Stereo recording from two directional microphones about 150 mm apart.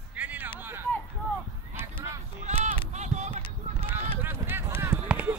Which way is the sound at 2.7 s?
50° right (ahead or behind).